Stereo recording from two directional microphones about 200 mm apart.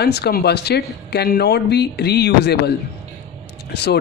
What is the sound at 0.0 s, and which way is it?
Speech, 55° left (ahead or behind).